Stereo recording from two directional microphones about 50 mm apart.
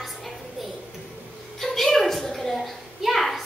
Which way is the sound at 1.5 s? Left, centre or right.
Centre.